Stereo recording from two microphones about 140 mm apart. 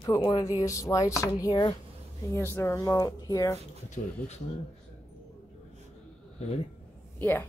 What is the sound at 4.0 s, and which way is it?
Speech, 70° left (ahead or behind).